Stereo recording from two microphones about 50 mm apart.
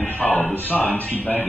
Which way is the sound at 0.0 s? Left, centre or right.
Left.